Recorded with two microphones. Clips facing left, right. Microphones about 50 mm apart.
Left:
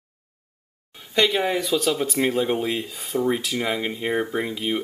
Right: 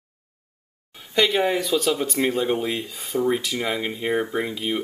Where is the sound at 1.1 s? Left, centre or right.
Centre.